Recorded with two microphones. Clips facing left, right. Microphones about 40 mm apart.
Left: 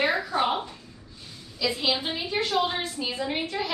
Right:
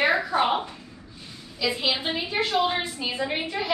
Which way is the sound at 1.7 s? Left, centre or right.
Centre.